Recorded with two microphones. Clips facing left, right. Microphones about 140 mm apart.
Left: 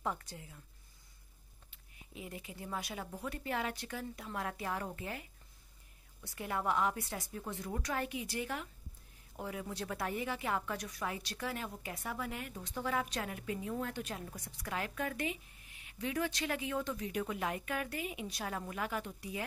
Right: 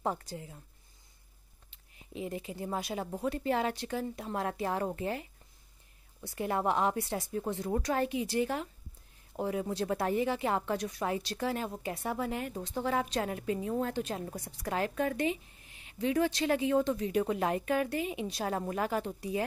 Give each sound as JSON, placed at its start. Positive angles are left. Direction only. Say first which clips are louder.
{"t": 0.0, "sound": "a woman's voice", "louder": "right 5 dB", "side_deg": -35}
{"t": 1.7, "sound": "a woman's voice", "louder": "right 8 dB", "side_deg": -30}
{"t": 6.2, "sound": "a woman's voice", "louder": "right 5 dB", "side_deg": -30}